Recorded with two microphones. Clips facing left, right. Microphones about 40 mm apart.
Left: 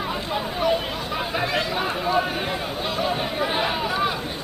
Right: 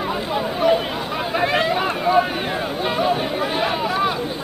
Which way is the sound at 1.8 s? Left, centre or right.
Centre.